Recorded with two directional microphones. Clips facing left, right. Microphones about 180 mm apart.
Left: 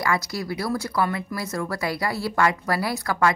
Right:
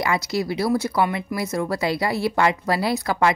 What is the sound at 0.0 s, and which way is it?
Speech, 20° right (ahead or behind).